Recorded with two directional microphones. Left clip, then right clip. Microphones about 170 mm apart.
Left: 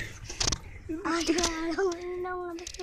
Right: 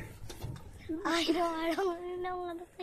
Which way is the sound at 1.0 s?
10° right (ahead or behind).